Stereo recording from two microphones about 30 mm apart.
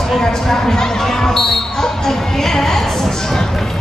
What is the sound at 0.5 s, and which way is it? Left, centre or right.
Speech, centre.